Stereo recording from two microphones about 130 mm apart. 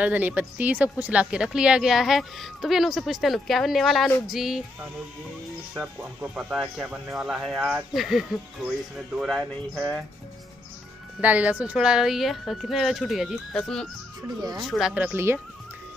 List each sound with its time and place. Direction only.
0.0 s speech: 10° right (ahead or behind)
5.8 s speech: 10° right (ahead or behind)
11.1 s speech: 10° right (ahead or behind)
15.1 s speech: 20° right (ahead or behind)